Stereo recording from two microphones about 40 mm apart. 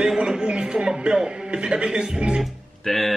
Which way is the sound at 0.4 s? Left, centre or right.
Right.